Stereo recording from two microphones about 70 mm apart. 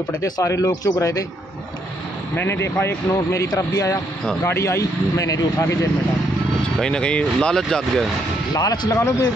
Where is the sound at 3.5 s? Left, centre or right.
Left.